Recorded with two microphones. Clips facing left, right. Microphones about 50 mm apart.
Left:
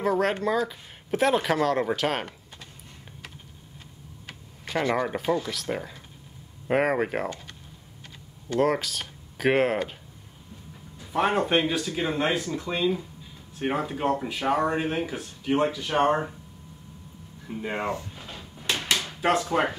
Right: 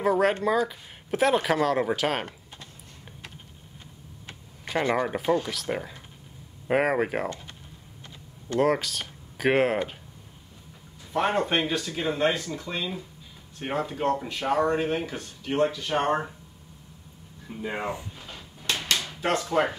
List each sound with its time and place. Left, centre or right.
0.0 s speech: centre
4.6 s speech: centre
8.5 s speech: centre
11.1 s speech: centre
17.5 s speech: centre
18.1 s drawer open or close: centre
18.8 s a sound: left
19.2 s speech: centre